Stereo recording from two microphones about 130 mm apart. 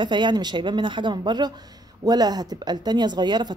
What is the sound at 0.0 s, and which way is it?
Speech, 35° right (ahead or behind).